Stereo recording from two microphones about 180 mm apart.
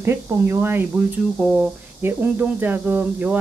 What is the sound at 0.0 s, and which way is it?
Speech, 15° right (ahead or behind).